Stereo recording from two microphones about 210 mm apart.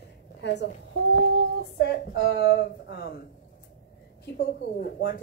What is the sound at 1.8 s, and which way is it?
A woman's voice, 50° left (ahead or behind).